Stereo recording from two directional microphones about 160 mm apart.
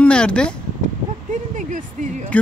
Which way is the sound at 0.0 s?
5° left (ahead or behind).